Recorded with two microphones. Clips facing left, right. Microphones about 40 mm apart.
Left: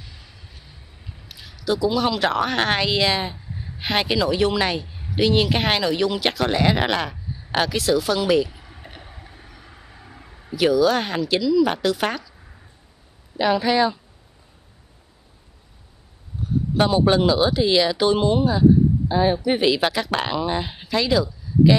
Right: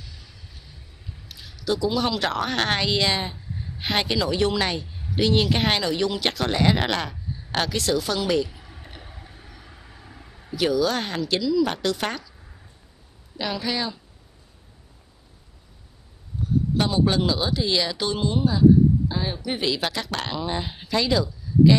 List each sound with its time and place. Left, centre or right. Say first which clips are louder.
1.0 s speech: left 1 dB; centre
13.4 s speech: left 9 dB; centre
16.4 s a sound: even; centre
16.7 s speech: left 6 dB; centre